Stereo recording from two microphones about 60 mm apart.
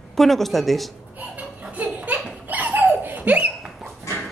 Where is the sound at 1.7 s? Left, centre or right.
Right.